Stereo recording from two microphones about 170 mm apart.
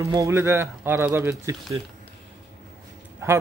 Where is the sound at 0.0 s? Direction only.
20° right (ahead or behind).